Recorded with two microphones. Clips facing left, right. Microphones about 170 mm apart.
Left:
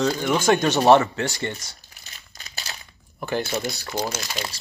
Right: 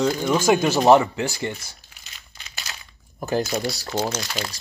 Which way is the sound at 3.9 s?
20° right (ahead or behind).